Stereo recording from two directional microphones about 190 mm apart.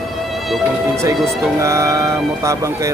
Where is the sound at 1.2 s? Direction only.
15° right (ahead or behind).